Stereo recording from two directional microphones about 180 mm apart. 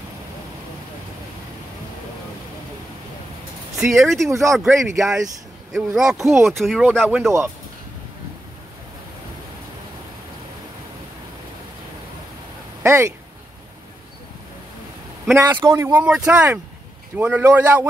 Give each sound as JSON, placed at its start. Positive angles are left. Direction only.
{"t": 4.0, "sound": "speech", "side_deg": 0}
{"t": 12.8, "sound": "speech", "side_deg": -15}
{"t": 15.3, "sound": "speech", "side_deg": -10}